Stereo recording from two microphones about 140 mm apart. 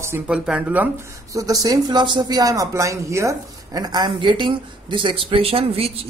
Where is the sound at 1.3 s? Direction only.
25° right (ahead or behind).